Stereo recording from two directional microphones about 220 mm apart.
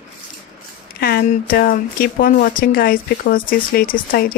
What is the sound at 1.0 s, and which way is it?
Speech, 45° left (ahead or behind).